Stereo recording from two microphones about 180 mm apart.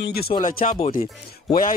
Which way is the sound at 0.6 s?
40° left (ahead or behind).